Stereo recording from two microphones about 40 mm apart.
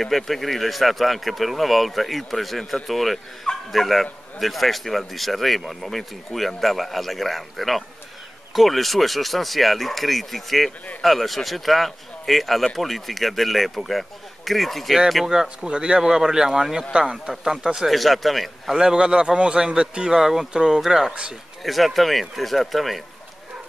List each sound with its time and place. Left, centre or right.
0.0 s speech: centre
15.2 s a man's voice: centre
17.7 s speech: centre
18.7 s a man's voice: centre